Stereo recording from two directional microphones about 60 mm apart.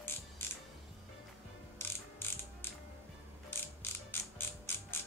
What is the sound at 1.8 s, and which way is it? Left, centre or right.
Mechanisms, left.